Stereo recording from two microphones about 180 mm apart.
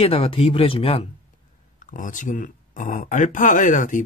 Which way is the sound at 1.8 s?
45° left (ahead or behind).